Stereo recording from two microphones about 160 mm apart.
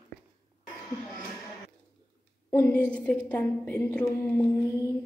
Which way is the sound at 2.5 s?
10° left (ahead or behind).